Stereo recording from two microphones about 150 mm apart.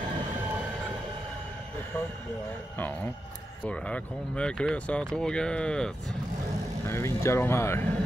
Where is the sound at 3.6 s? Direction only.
5° left (ahead or behind).